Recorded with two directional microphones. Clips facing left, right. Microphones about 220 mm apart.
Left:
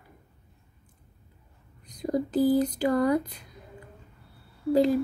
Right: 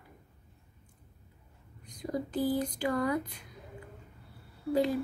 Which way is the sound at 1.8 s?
40° left (ahead or behind).